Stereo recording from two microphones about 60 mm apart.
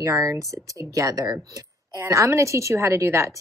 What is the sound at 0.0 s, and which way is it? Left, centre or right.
A woman's voice, right.